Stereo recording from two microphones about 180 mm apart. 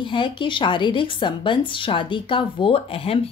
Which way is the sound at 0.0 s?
25° left (ahead or behind).